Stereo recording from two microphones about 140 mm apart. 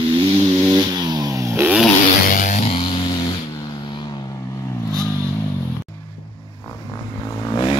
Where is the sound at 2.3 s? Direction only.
65° left (ahead or behind).